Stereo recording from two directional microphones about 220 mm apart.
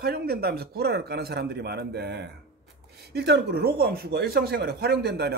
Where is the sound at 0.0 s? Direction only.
45° right (ahead or behind).